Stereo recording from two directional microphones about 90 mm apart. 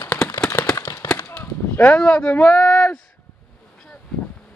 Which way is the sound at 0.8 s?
40° left (ahead or behind).